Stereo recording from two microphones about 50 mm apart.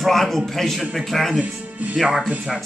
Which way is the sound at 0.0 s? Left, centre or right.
Centre.